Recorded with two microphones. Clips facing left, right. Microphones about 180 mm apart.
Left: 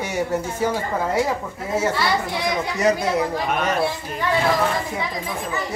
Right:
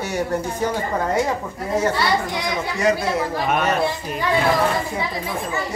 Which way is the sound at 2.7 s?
20° left (ahead or behind).